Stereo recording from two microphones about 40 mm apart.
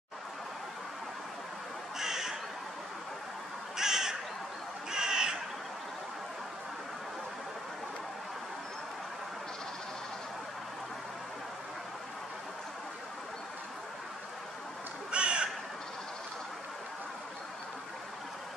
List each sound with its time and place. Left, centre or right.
2.0 s crow: centre
3.7 s crow: centre
15.0 s crow: right